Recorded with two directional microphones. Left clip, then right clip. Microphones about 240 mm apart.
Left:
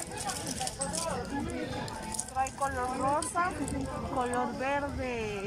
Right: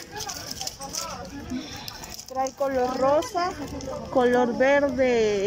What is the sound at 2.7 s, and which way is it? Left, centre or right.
Speech, right.